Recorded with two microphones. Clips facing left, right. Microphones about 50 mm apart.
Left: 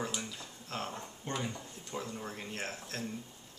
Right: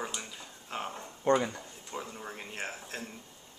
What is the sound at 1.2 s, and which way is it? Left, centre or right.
Speech, right.